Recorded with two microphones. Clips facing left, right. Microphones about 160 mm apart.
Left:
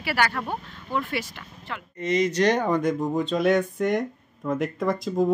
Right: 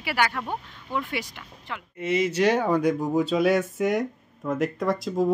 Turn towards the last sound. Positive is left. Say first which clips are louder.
# left 1 dB
turn(degrees=0)  # may be behind; listen again after turning